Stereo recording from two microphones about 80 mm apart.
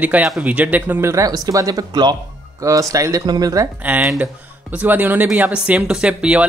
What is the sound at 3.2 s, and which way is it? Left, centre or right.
Speech, right.